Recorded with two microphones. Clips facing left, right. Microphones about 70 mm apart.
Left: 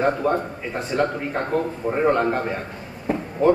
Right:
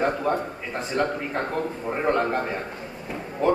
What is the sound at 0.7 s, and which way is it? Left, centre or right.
A man's voice, centre.